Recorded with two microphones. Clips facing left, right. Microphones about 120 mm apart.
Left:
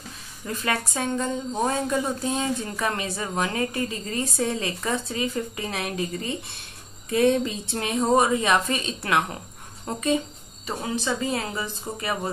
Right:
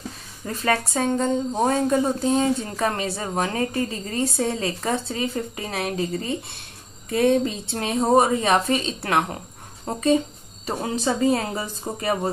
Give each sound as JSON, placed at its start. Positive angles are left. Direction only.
{"t": 0.5, "sound": "a woman's voice", "side_deg": -35}
{"t": 10.7, "sound": "speech", "side_deg": -45}